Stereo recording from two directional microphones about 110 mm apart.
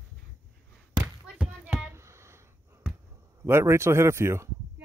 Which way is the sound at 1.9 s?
25° right (ahead or behind).